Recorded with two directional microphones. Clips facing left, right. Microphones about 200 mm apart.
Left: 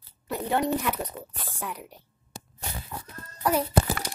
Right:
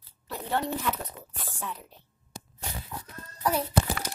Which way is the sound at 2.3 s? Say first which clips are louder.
Even; 30° left (ahead or behind).